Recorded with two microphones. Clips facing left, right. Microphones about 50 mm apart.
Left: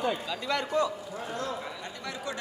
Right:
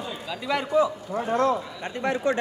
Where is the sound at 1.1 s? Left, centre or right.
Right.